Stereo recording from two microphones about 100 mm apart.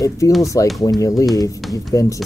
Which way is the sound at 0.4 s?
30° left (ahead or behind).